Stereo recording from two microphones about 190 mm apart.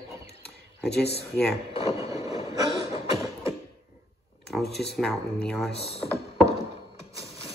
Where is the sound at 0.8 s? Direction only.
60° left (ahead or behind).